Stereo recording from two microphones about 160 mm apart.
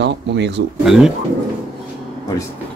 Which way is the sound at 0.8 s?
Centre (ahead or behind).